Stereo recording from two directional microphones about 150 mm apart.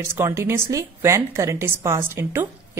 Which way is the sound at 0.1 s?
15° right (ahead or behind).